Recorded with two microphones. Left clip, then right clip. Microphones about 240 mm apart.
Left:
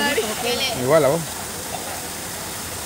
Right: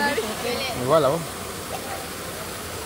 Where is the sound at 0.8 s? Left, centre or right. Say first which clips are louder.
Left 2 dB; left.